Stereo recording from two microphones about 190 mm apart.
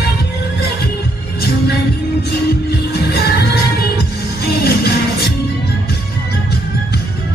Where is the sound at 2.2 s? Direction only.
55° left (ahead or behind).